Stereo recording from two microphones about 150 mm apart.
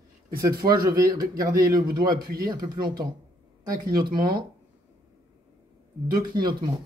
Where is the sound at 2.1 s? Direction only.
85° right.